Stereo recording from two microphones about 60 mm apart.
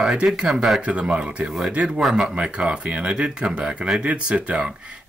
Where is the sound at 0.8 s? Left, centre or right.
Centre.